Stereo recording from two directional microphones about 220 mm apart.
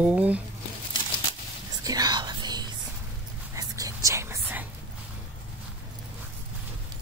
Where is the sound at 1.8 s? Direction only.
15° right (ahead or behind).